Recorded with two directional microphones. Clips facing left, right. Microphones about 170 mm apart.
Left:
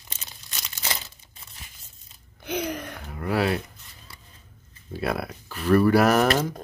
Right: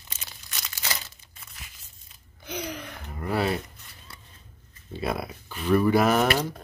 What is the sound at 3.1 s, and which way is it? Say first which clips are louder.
Speech: left 2 dB; 5° left (ahead or behind).